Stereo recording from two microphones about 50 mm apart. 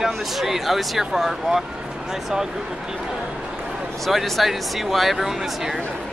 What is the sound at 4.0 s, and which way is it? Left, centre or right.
Speech, centre.